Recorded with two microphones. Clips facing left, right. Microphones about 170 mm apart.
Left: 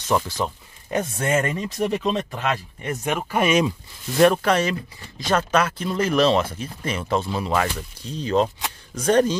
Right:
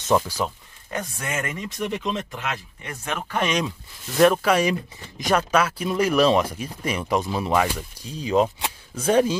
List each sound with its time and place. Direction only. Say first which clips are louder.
0.1 s speech: right 1 dB; 10° right (ahead or behind)
0.8 s speech: left 7 dB; 25° left (ahead or behind); by 2.9 s 40° left (ahead or behind)
2.9 s speech: left 4 dB; 15° left (ahead or behind); by 9.4 s 5° right (ahead or behind)